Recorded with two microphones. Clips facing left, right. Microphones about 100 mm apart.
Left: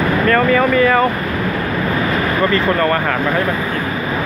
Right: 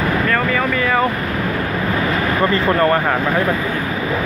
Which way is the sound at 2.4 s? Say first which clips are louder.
Right 1 dB; 20° right (ahead or behind).